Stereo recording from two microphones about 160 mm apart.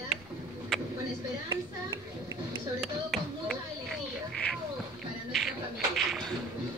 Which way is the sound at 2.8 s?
Centre (ahead or behind).